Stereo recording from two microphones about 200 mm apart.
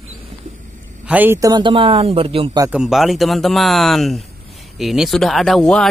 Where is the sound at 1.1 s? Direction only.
10° right (ahead or behind); by 2.6 s 25° right (ahead or behind).